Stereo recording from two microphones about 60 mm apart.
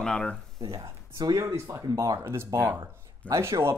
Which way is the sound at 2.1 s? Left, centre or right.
Right.